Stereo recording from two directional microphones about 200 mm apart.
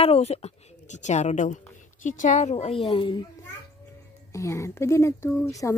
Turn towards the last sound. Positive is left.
turn(degrees=15)  # may be behind; listen again after turning